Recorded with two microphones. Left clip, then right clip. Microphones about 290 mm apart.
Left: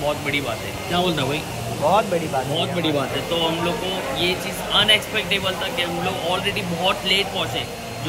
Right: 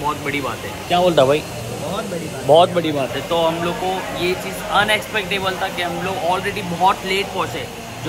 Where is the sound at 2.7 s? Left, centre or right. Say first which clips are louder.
Right 2 dB; centre.